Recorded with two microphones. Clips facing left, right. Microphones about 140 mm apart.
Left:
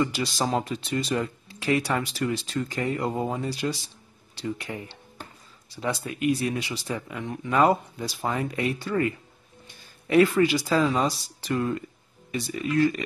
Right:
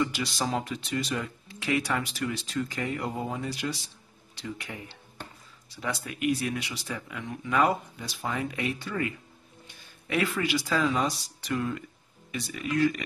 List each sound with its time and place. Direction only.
0.1 s speech: 35° left (ahead or behind)